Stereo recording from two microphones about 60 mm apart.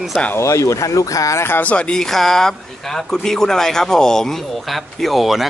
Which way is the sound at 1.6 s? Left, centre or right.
Left.